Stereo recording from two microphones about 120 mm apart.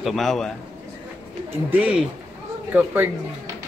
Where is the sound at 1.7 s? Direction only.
10° right (ahead or behind).